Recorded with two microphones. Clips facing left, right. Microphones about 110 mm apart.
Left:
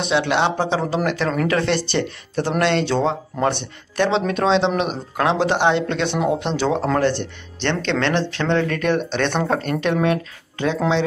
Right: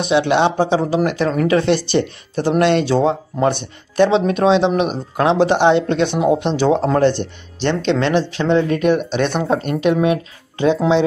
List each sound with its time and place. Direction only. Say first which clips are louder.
0.0 s speech: right 4 dB; 20° right (ahead or behind)